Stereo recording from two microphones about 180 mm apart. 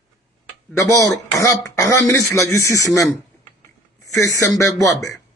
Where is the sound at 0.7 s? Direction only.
20° left (ahead or behind).